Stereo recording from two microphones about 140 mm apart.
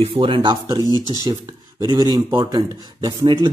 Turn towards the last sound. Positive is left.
turn(degrees=-25)  # may be behind; listen again after turning